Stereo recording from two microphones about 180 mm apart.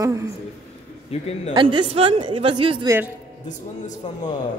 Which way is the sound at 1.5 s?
25° right (ahead or behind).